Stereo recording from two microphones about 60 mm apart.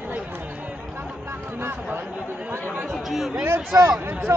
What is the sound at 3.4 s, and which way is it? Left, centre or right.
Speech, right.